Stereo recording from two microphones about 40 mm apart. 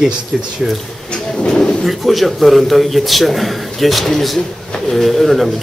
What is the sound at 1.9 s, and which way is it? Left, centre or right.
A man's voice, centre.